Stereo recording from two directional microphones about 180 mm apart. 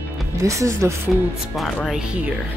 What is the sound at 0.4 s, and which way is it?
Speech, 15° right (ahead or behind).